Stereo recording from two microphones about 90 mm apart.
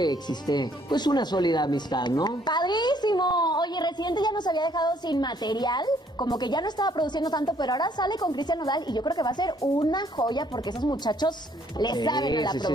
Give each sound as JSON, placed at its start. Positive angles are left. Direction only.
{"t": 0.0, "sound": "speech", "side_deg": 50}